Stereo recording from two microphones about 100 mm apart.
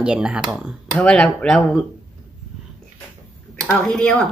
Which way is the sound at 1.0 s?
10° left (ahead or behind).